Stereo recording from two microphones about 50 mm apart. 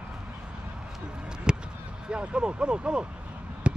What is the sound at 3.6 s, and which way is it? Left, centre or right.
Fireworks, right.